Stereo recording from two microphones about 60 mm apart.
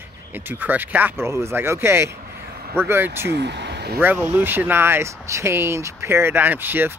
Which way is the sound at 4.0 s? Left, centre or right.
Right.